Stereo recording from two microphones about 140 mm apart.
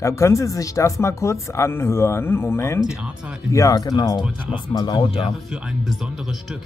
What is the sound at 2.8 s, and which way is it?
Speech, 5° right (ahead or behind).